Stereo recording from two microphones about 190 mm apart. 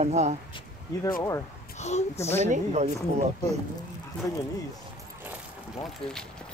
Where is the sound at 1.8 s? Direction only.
35° left (ahead or behind).